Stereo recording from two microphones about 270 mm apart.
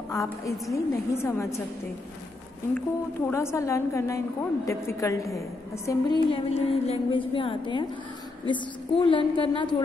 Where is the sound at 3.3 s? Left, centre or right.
Centre.